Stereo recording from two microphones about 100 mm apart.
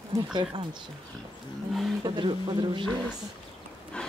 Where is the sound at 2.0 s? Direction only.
50° right (ahead or behind).